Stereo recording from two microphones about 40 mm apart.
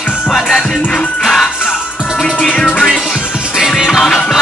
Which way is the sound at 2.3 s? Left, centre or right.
Left.